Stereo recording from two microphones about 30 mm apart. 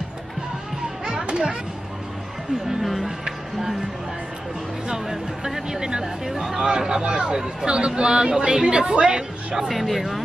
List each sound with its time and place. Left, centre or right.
1.2 s a sound: right
2.8 s speech: centre
4.8 s speech: centre
5.8 s a woman's voice: right
6.3 s a woman's voice: centre; by 9.1 s right
9.1 s a woman's voice: right
9.7 s speech: centre